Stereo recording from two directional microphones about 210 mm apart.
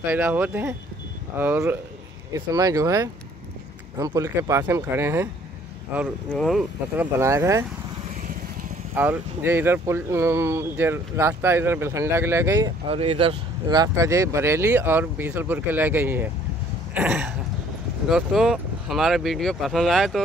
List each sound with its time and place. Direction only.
0.0 s speech: 10° right (ahead or behind)
7.2 s speech: 15° right (ahead or behind)
8.9 s speech: 10° right (ahead or behind)